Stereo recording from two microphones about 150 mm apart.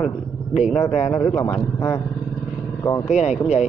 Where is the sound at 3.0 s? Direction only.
50° left (ahead or behind).